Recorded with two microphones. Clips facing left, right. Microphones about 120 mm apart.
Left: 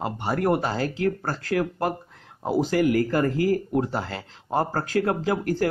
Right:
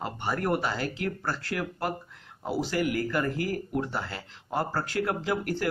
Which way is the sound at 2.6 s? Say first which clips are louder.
Left 7 dB; 40° left (ahead or behind).